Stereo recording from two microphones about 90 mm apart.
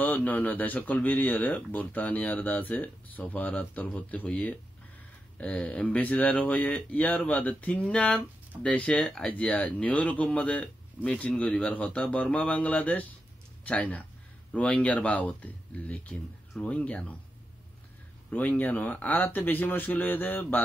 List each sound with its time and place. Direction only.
0.0 s speech: 20° left (ahead or behind)
18.3 s speech: 20° left (ahead or behind)